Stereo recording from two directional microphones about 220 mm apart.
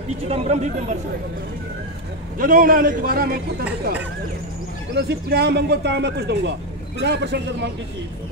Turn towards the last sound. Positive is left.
turn(degrees=-50)  # may be behind; listen again after turning